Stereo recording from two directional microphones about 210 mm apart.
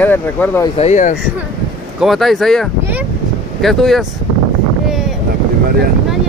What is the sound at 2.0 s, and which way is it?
Speech, centre (ahead or behind).